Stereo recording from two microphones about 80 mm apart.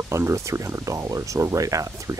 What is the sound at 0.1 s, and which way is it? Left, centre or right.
Speech, right.